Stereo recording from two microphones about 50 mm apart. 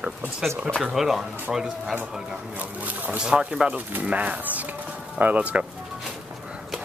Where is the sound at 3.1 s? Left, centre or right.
Right.